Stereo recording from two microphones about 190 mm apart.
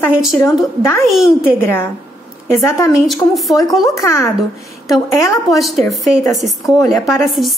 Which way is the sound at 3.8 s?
15° left (ahead or behind).